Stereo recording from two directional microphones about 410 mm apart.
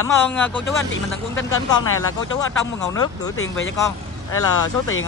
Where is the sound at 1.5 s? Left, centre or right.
Left.